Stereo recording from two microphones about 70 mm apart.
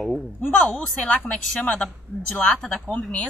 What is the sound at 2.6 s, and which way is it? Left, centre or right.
Speech, centre.